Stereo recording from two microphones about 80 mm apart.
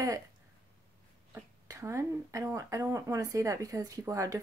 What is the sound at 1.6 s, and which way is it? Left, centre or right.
A woman's voice, right.